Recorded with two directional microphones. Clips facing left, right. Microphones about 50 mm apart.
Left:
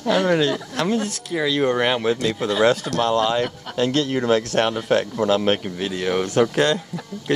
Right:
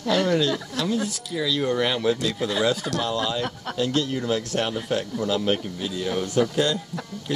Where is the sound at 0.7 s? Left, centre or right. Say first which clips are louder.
Left 3 dB; left.